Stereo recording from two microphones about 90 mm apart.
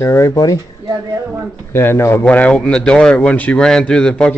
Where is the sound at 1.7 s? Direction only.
25° left (ahead or behind).